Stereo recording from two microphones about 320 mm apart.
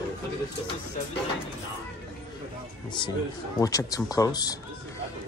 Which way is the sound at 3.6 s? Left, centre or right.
Centre.